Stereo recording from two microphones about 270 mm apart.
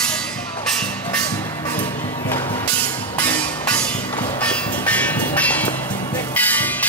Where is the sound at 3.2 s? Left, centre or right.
Centre.